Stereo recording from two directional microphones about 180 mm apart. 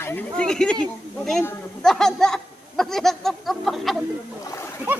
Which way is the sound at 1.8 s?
5° left (ahead or behind).